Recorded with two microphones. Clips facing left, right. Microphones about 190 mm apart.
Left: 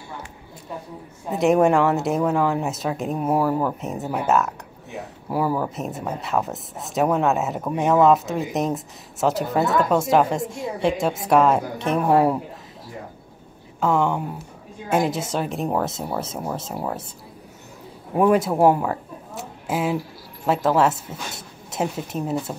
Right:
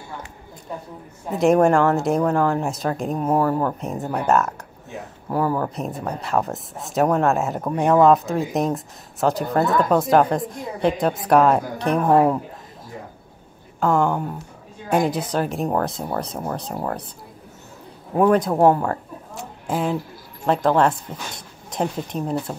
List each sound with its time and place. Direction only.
1.3 s speech: centre (ahead or behind)
13.7 s speech: centre (ahead or behind)
18.1 s speech: 5° left (ahead or behind)